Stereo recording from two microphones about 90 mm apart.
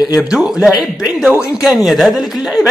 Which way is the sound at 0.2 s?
10° right (ahead or behind).